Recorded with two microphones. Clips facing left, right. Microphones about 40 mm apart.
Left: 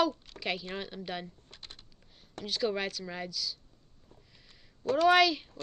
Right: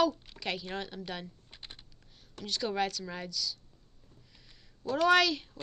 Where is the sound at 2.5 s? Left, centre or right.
Centre.